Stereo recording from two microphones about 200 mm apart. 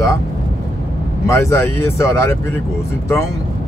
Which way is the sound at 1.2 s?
15° left (ahead or behind).